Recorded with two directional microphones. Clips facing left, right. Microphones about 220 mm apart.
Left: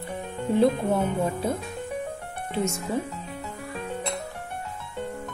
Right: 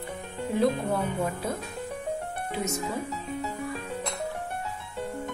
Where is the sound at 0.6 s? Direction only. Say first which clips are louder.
Left 4 dB; 25° left (ahead or behind).